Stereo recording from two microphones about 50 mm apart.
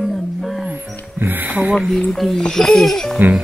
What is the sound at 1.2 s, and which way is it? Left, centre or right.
Music, right.